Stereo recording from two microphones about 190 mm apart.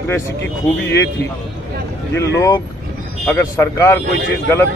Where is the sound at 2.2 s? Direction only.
15° left (ahead or behind).